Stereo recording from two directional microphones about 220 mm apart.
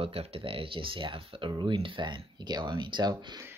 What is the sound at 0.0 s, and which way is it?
Speech, 25° right (ahead or behind).